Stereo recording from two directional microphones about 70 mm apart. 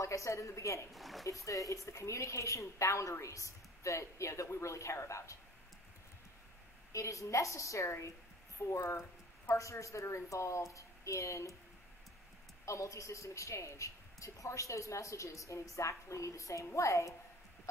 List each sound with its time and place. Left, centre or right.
0.0 s speech: left
0.9 s speech: centre
1.4 s speech: left
6.9 s speech: left
12.6 s speech: left